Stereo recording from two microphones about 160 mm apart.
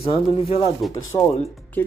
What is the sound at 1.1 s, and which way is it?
Speech, 15° left (ahead or behind).